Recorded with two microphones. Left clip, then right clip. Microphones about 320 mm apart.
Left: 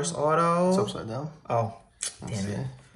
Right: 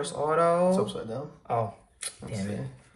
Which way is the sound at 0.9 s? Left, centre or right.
Left.